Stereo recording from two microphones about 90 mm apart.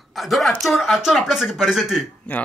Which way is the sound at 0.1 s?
Centre (ahead or behind).